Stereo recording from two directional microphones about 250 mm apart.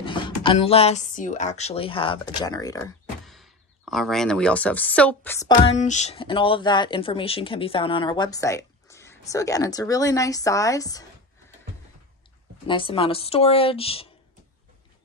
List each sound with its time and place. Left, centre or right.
0.0 s speech: centre
3.3 s speech: centre
5.8 s speech: left
12.6 s speech: left